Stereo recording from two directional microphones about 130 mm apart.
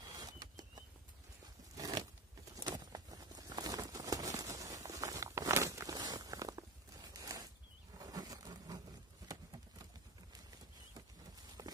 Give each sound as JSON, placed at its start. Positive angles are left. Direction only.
{"t": 0.0, "sound": "bird flight", "side_deg": -30}
{"t": 1.4, "sound": "a sound", "side_deg": -30}
{"t": 7.9, "sound": "wild animals", "side_deg": -30}
{"t": 9.3, "sound": "clip-clop", "side_deg": -30}
{"t": 11.6, "sound": "walk", "side_deg": -30}